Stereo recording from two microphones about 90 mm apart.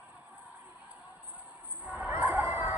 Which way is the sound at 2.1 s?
25° right (ahead or behind).